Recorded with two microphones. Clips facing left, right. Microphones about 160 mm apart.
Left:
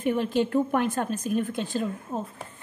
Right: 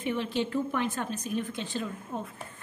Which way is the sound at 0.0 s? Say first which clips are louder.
Left 5 dB; 45° left (ahead or behind).